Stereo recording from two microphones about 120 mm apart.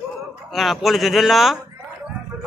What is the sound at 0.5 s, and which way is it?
A man's voice, centre (ahead or behind).